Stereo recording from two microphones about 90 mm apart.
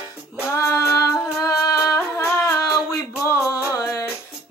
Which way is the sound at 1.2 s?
40° left (ahead or behind).